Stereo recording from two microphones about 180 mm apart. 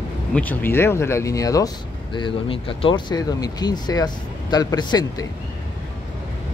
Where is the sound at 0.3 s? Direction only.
10° left (ahead or behind).